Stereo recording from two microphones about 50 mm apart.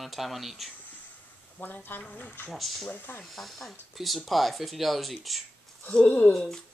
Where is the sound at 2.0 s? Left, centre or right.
Left.